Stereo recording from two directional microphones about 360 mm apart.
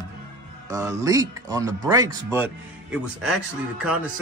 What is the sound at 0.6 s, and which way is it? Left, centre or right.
Speech, centre.